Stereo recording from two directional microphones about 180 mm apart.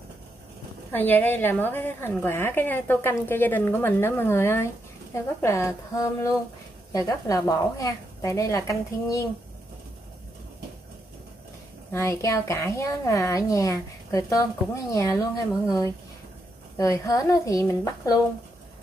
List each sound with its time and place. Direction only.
0.9 s a woman's voice: 10° left (ahead or behind)
11.9 s a woman's voice: 15° left (ahead or behind)
16.7 s speech: 15° left (ahead or behind)